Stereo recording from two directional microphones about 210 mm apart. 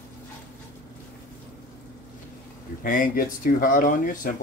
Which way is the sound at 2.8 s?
40° left (ahead or behind).